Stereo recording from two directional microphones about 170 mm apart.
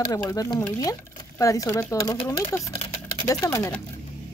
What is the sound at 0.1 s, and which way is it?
Speech, 20° left (ahead or behind).